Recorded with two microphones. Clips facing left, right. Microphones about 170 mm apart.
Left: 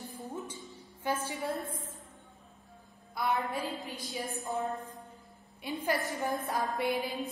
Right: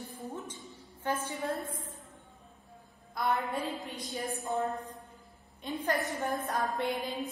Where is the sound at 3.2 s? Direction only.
Centre (ahead or behind).